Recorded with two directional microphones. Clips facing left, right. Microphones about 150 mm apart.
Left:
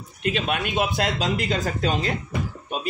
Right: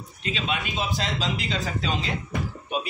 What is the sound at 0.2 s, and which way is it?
Speech, 50° left (ahead or behind).